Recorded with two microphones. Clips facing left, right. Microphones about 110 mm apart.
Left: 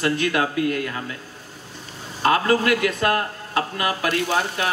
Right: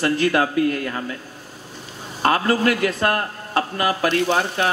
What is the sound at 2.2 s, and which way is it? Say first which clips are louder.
A man's voice: even; 40° right (ahead or behind).